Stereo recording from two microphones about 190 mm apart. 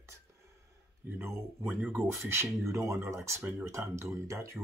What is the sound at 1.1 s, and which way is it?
Speech, 10° right (ahead or behind).